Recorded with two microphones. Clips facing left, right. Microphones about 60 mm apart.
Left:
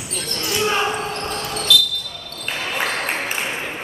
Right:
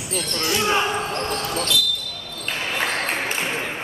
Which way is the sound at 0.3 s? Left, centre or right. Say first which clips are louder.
Even; centre.